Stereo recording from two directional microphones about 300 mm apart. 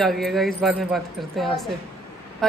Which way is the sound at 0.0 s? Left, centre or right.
Centre.